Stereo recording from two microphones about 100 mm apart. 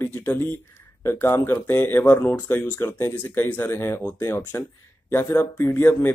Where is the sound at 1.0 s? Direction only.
25° left (ahead or behind).